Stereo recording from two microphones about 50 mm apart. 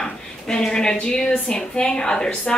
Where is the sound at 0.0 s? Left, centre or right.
Centre.